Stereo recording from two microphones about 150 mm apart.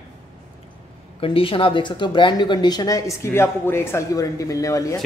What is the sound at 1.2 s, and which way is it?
Speech, 35° left (ahead or behind).